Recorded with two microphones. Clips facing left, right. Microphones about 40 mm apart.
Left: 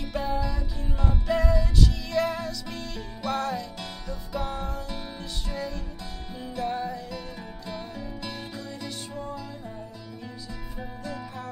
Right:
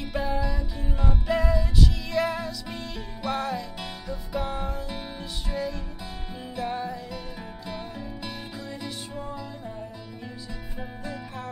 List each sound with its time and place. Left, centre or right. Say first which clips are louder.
0.0 s music: even; centre
10.8 s music: even; centre